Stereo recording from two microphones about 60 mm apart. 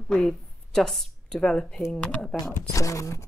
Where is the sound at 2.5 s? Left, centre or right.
Left.